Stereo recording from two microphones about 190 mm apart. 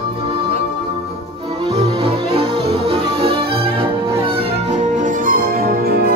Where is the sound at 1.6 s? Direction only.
30° right (ahead or behind).